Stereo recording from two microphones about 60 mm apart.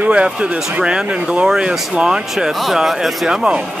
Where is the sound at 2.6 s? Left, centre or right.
Centre.